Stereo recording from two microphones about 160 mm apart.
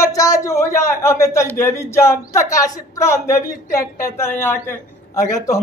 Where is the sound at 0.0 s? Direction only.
20° left (ahead or behind).